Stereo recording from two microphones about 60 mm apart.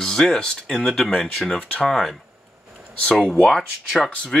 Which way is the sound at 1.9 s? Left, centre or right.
Centre.